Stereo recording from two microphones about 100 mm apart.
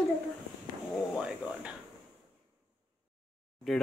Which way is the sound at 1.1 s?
10° right (ahead or behind).